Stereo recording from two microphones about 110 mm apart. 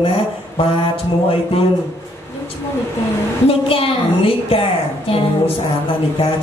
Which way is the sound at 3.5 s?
60° left (ahead or behind).